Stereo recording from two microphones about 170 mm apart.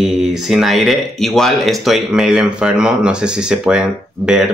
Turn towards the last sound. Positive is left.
turn(degrees=-5)  # may be behind; listen again after turning